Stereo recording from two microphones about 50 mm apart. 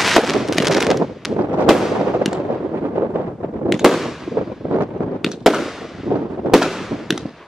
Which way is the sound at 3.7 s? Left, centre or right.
Centre.